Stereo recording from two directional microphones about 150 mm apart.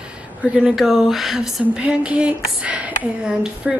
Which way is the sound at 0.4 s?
5° right (ahead or behind).